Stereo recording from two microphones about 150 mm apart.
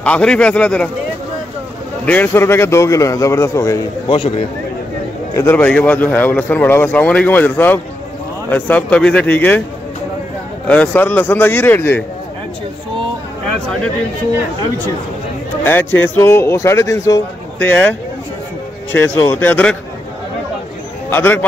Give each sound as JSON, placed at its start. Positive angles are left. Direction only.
{"t": 0.0, "sound": "a man's voice", "side_deg": 5}
{"t": 2.0, "sound": "a man's voice", "side_deg": 15}
{"t": 5.3, "sound": "a man's voice", "side_deg": 15}
{"t": 10.7, "sound": "a man's voice", "side_deg": 10}
{"t": 15.6, "sound": "a man's voice", "side_deg": 15}
{"t": 21.1, "sound": "a man's voice", "side_deg": 15}